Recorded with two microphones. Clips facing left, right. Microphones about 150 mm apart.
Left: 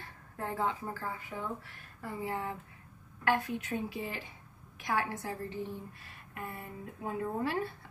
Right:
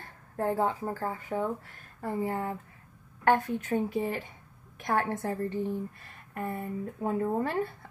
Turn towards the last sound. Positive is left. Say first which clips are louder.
# right 4 dB
turn(degrees=-45)  # may be behind; listen again after turning